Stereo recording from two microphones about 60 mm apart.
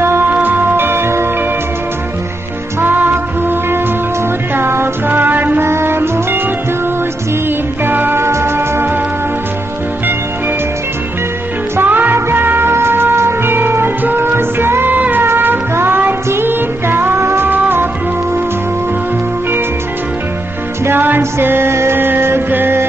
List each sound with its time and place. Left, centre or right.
0.0 s music: right
0.3 s music: right
2.8 s music: right
7.4 s music: right
8.2 s music: right
11.7 s music: right
20.8 s music: right